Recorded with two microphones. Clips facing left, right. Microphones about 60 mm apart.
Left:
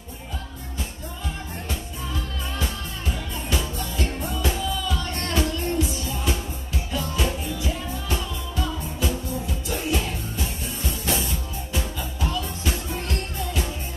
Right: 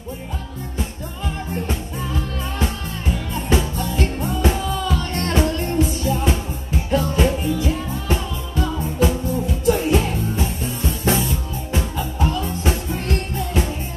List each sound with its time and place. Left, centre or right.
3.3 s music: right